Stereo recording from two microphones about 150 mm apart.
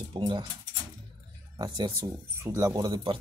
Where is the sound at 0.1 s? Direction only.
30° right (ahead or behind).